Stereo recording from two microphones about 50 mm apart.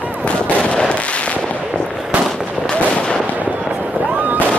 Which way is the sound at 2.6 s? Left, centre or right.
Centre.